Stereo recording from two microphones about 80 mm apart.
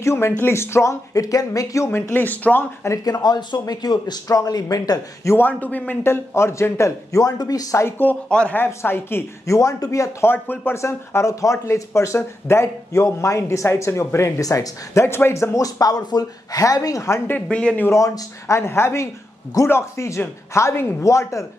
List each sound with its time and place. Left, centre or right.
0.0 s speech: left
1.1 s speech: left
1.9 s speech: left
3.0 s a man's voice: left
5.5 s speech: centre; by 7.8 s left
7.8 s speech: left
8.3 s speech: centre
8.5 s speech: left
9.5 s speech: left
10.2 s speech: left
15.5 s speech: left
17.3 s speech: centre
17.8 s speech: left